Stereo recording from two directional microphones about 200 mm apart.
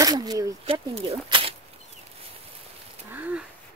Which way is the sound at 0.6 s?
30° right (ahead or behind).